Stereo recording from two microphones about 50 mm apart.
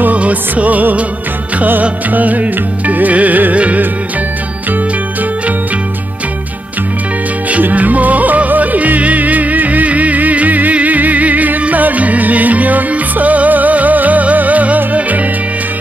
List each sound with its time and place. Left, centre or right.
0.0 s music: right
7.6 s music: right